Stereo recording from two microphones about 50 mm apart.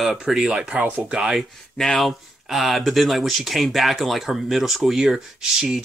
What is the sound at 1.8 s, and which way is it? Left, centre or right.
Speech, centre.